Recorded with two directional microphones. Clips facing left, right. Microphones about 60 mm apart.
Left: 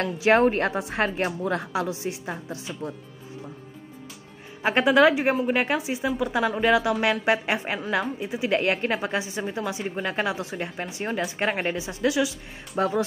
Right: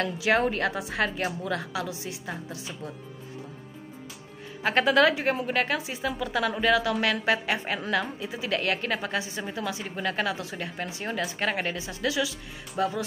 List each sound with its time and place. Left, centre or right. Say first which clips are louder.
0.0 s a woman's voice: left 5 dB; left
4.6 s a woman's voice: left 3 dB; centre
12.7 s a woman's voice: left 4 dB; left